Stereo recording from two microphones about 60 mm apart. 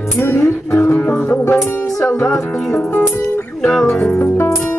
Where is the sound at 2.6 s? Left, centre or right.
Centre.